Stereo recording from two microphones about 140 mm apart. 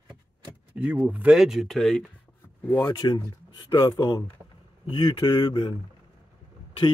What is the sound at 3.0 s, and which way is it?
Speech, 35° left (ahead or behind).